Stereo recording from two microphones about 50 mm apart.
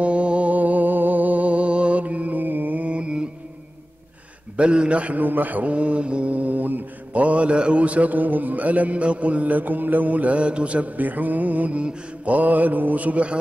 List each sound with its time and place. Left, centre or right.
0.0 s music: right
4.6 s a man's voice: right
5.2 s mantra: right